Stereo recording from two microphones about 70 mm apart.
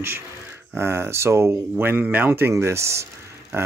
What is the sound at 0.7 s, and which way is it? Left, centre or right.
Speech, right.